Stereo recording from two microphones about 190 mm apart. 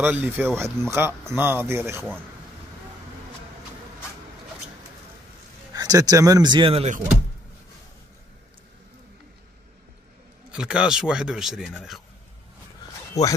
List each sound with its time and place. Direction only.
0.0 s speech: 10° right (ahead or behind)
5.7 s speech: 20° right (ahead or behind)
10.5 s speech: 5° right (ahead or behind)
13.2 s speech: 20° left (ahead or behind)